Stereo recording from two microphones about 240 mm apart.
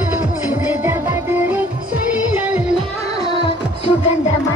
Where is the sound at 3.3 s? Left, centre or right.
Centre.